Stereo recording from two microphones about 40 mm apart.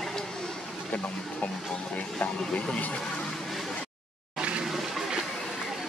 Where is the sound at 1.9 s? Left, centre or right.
Left.